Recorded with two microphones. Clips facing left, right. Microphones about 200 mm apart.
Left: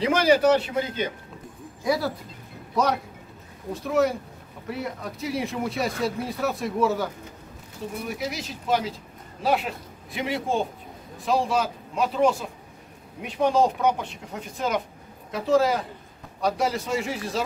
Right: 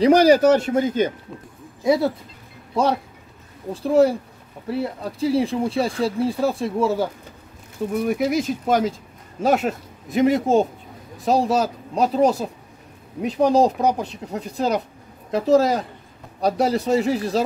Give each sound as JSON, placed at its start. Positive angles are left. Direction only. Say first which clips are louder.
{"t": 0.0, "sound": "a man's voice", "louder": "right 6 dB", "side_deg": -40}
{"t": 1.9, "sound": "speech", "louder": "right 6 dB", "side_deg": -25}
{"t": 8.0, "sound": "a man's voice", "louder": "right 11 dB", "side_deg": -55}